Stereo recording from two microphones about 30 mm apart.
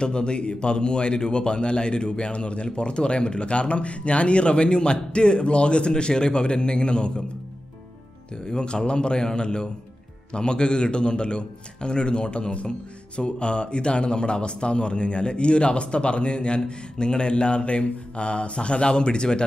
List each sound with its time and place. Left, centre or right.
0.0 s a man's voice: left
8.5 s a man's voice: left